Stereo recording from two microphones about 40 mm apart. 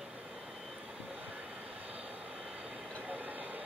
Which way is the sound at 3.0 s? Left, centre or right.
Right.